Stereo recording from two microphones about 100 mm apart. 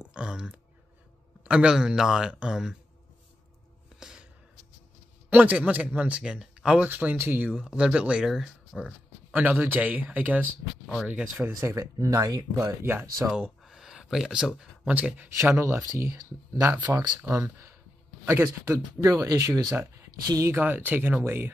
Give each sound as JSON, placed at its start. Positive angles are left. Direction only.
{"t": 0.0, "sound": "a sound", "side_deg": -10}
{"t": 1.4, "sound": "speech", "side_deg": -10}
{"t": 4.0, "sound": "music", "side_deg": -10}
{"t": 5.3, "sound": "speech", "side_deg": -15}
{"t": 9.3, "sound": "speech", "side_deg": -20}
{"t": 11.7, "sound": "speech", "side_deg": -30}
{"t": 12.6, "sound": "speech", "side_deg": -25}
{"t": 13.6, "sound": "a sound", "side_deg": -5}
{"t": 14.6, "sound": "speech", "side_deg": -10}
{"t": 15.3, "sound": "speech", "side_deg": -25}
{"t": 19.7, "sound": "speech", "side_deg": -25}